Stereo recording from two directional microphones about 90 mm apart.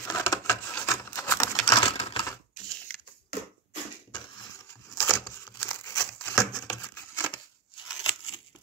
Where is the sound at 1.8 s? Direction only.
65° left (ahead or behind).